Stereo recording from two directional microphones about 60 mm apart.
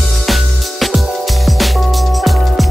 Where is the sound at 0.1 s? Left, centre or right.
Centre.